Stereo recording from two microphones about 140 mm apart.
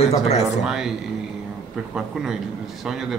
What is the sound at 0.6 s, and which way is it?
Speech, 5° right (ahead or behind).